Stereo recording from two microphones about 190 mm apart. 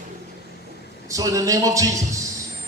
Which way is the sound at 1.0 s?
15° right (ahead or behind).